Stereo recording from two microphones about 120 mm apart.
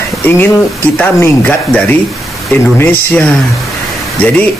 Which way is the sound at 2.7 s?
20° left (ahead or behind).